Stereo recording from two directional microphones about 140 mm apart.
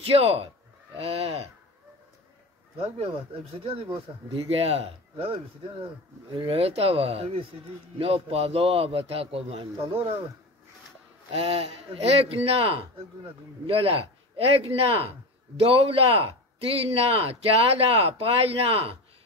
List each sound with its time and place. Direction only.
0.0 s speech: 45° right (ahead or behind)
2.8 s speech: 40° right (ahead or behind)
11.3 s speech: 45° right (ahead or behind)